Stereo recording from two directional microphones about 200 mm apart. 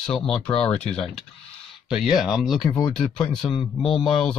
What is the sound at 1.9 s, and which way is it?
Speech, centre (ahead or behind).